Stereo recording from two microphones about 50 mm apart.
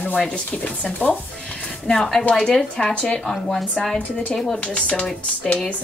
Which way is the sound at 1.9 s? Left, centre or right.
Centre.